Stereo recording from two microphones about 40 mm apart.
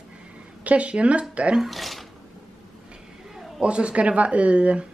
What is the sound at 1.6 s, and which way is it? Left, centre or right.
Speech, centre.